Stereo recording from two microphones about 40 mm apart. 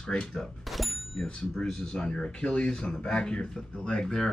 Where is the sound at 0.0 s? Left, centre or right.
Centre.